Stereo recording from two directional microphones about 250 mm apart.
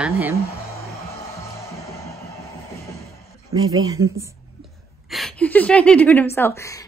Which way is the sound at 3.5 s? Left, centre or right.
Right.